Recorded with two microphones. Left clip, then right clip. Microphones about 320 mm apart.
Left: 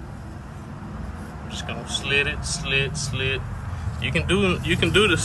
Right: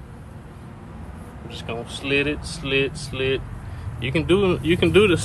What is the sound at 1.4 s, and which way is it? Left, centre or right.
Speech, centre.